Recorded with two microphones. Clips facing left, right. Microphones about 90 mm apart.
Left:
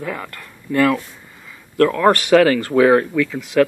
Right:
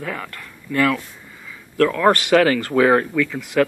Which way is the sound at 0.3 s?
30° left (ahead or behind).